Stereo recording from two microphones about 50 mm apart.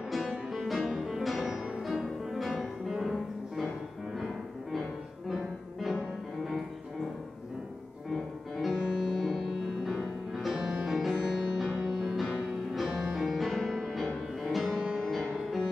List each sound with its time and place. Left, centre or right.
0.5 s music: centre
5.3 s music: centre
8.1 s music: centre
10.6 s music: centre
10.9 s music: centre